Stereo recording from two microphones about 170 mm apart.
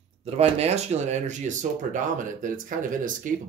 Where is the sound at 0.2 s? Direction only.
40° right (ahead or behind).